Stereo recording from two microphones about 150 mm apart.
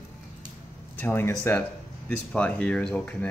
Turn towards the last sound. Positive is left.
turn(degrees=10)  # may be behind; listen again after turning